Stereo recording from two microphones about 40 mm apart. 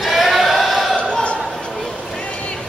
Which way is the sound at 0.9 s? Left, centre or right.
Left.